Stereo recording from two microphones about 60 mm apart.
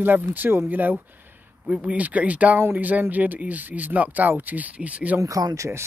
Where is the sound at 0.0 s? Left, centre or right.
Right.